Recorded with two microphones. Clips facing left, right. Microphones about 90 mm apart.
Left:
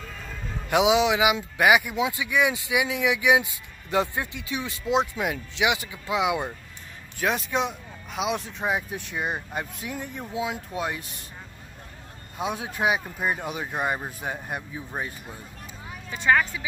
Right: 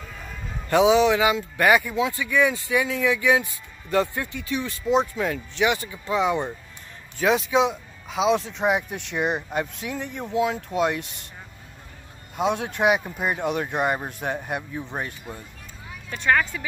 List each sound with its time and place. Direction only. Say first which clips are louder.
0.7 s speech: right 3 dB; 10° left (ahead or behind)
12.4 s speech: right 5 dB; 5° left (ahead or behind)